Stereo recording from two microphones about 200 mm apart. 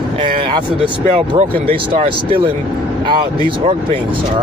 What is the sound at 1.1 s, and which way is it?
Speech, 30° right (ahead or behind).